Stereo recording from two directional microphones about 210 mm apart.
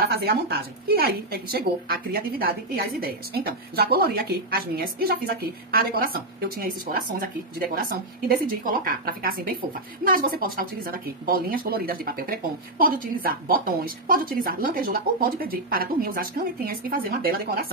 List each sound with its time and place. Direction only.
0.0 s speech: 50° right (ahead or behind)